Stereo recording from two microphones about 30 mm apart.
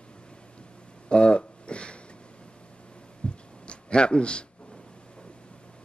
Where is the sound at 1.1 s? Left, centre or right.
Left.